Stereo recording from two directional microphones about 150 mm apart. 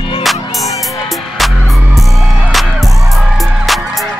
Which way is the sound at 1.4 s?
Centre (ahead or behind).